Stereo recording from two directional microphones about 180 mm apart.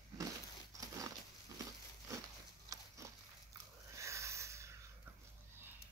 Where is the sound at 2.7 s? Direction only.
15° right (ahead or behind).